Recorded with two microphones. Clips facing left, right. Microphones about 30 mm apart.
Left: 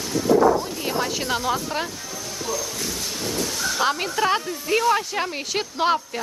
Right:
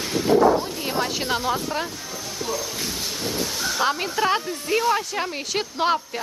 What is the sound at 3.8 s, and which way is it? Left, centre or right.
Speech, centre.